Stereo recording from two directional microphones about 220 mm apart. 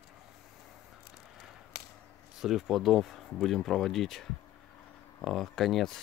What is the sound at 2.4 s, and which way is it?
Speech, centre (ahead or behind).